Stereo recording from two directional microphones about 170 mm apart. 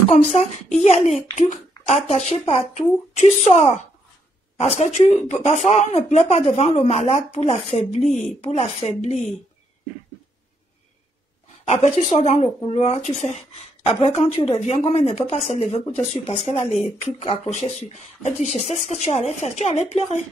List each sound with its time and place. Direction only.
0.1 s a child's voice: 40° left (ahead or behind)
11.6 s speech: 40° left (ahead or behind)